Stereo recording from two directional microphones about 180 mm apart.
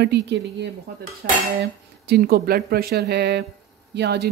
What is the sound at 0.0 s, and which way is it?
Speech, 70° right (ahead or behind).